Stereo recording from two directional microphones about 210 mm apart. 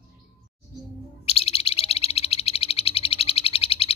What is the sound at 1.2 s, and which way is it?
Bird, 30° left (ahead or behind).